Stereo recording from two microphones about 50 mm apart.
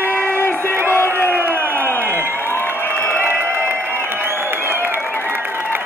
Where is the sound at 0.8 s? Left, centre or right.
Left.